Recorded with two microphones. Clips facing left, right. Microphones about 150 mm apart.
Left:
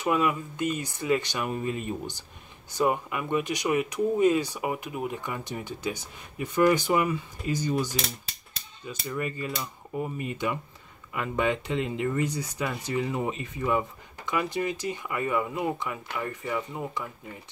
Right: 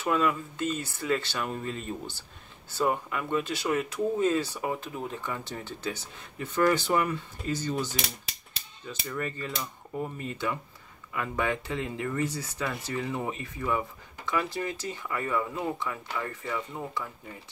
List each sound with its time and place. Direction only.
0.0 s speech: 15° left (ahead or behind)
8.8 s speech: 10° left (ahead or behind)